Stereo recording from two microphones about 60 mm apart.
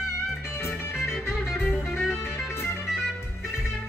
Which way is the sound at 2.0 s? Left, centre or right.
Left.